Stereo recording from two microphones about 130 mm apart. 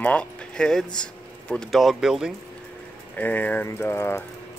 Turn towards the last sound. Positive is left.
turn(degrees=20)  # may be behind; listen again after turning